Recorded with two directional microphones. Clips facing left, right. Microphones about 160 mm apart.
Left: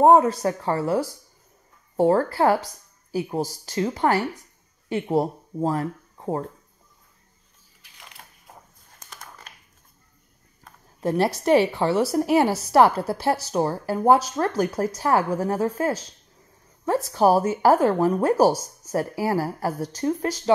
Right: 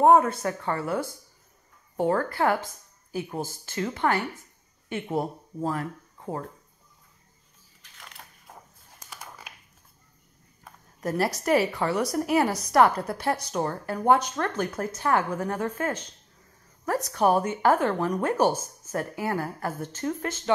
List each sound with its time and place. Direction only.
0.0 s a woman's voice: 30° left (ahead or behind)
7.8 s crushing: 10° left (ahead or behind)
9.0 s crushing: 10° right (ahead or behind)
11.0 s a woman's voice: 25° left (ahead or behind)
17.1 s a woman's voice: 30° left (ahead or behind)